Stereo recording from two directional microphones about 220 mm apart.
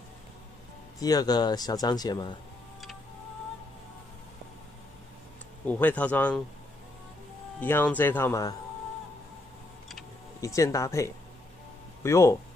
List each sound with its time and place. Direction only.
0.9 s speech: 15° left (ahead or behind)
5.7 s speech: 5° left (ahead or behind)
7.6 s speech: 10° left (ahead or behind)
10.4 s speech: 15° left (ahead or behind)